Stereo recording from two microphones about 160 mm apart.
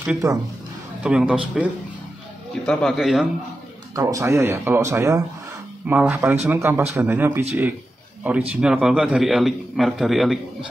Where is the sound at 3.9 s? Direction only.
20° right (ahead or behind).